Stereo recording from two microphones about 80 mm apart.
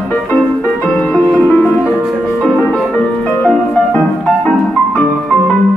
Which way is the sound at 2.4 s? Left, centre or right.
Centre.